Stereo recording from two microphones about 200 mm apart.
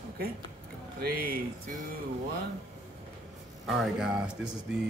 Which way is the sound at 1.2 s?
45° right (ahead or behind).